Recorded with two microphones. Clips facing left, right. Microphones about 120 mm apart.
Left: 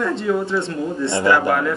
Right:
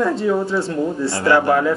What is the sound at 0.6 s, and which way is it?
Speech, 25° left (ahead or behind).